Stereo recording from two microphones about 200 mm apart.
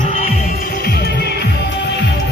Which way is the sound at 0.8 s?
55° left (ahead or behind).